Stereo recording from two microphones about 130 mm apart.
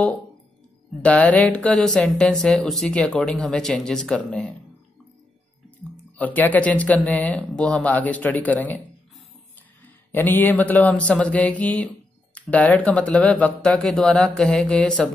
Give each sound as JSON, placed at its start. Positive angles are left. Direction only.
{"t": 1.0, "sound": "speech", "side_deg": 10}
{"t": 6.1, "sound": "speech", "side_deg": 10}
{"t": 10.1, "sound": "speech", "side_deg": 15}